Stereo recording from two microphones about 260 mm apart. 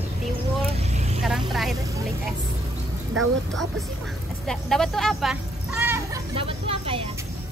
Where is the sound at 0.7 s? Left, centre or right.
Right.